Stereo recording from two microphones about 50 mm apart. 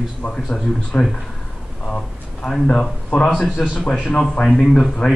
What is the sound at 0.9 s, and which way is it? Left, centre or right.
Speech, left.